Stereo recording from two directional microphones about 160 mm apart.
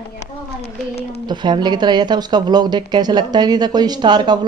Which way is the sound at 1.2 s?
30° right (ahead or behind).